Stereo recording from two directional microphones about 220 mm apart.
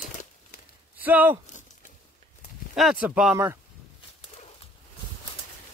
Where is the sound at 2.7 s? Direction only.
5° right (ahead or behind).